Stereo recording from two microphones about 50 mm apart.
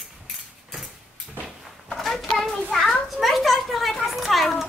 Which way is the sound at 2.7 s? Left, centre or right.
Centre.